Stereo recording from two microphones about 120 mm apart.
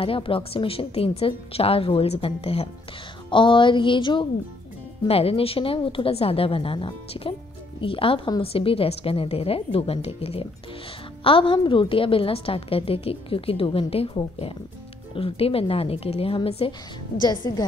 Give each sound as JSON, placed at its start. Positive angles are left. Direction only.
{"t": 0.0, "sound": "a woman's voice", "side_deg": 50}
{"t": 3.3, "sound": "a woman's voice", "side_deg": 45}
{"t": 5.0, "sound": "a woman's voice", "side_deg": 55}
{"t": 17.2, "sound": "a woman's voice", "side_deg": 35}